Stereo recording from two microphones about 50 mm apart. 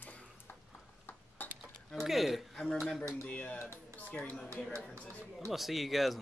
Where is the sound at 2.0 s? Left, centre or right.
Centre.